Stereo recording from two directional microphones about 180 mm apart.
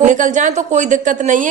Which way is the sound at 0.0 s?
45° right (ahead or behind).